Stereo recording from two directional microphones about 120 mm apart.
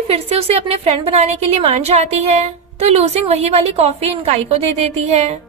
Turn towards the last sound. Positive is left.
turn(degrees=-60)  # may be behind; listen again after turning